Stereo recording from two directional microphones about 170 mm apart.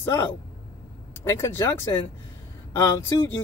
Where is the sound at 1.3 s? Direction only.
15° left (ahead or behind).